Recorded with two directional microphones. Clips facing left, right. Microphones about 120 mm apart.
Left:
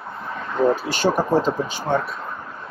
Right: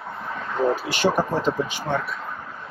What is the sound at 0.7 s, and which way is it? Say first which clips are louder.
Speech: left 1 dB; 35° left (ahead or behind).